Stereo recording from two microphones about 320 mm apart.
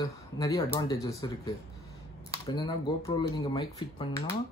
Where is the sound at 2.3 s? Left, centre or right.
Centre.